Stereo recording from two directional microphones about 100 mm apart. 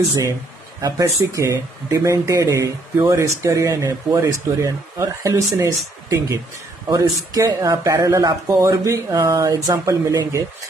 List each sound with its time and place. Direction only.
0.1 s speech: 35° right (ahead or behind)